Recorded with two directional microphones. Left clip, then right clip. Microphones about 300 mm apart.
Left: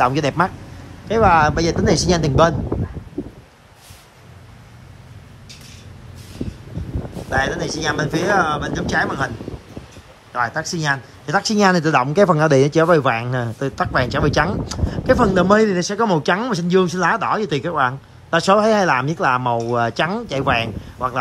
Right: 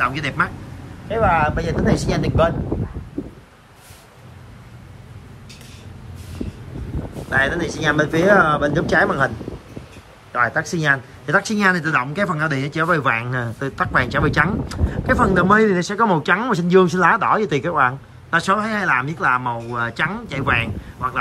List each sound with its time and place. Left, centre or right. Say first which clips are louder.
0.0 s speech: left 3 dB; centre
7.2 s speech: right 1 dB; centre
10.3 s speech: right 2 dB; centre